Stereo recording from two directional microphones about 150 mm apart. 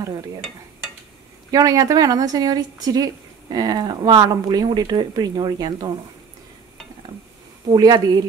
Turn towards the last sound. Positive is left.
turn(degrees=-30)  # may be behind; listen again after turning